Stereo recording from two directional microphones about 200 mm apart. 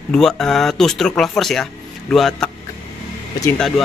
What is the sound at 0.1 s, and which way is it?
Speech, centre (ahead or behind).